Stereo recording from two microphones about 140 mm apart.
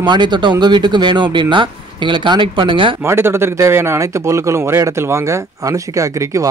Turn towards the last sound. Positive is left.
turn(degrees=-20)  # may be behind; listen again after turning